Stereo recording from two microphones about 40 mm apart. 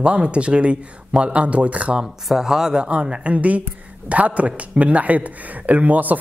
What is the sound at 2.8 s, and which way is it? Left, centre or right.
Speech, right.